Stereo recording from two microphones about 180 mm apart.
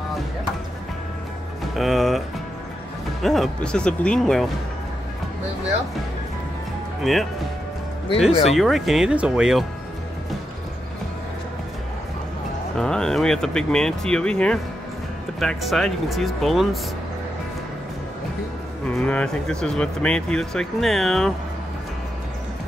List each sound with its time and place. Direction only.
1.8 s music: centre (ahead or behind)
3.2 s speech: centre (ahead or behind)
7.0 s speech: centre (ahead or behind)
8.3 s speech: 35° left (ahead or behind)
8.5 s speech: centre (ahead or behind)
12.7 s speech: 5° left (ahead or behind)
18.9 s speech: 5° left (ahead or behind)